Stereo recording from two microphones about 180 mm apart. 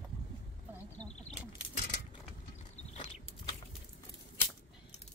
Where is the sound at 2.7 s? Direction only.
40° left (ahead or behind).